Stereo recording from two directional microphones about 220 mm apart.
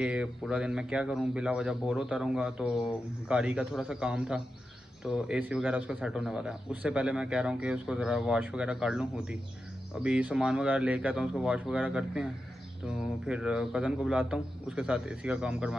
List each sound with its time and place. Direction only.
0.0 s a man's voice: 5° right (ahead or behind)